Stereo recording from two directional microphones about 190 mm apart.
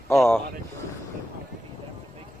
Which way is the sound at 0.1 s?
15° left (ahead or behind).